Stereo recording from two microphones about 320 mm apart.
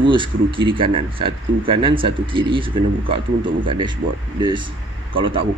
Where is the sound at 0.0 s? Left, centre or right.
Centre.